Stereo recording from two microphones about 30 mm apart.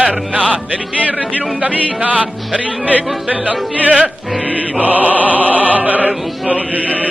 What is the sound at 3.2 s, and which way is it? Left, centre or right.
Music, right.